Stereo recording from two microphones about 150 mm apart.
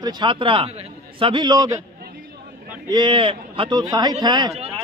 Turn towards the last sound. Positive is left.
turn(degrees=-25)  # may be behind; listen again after turning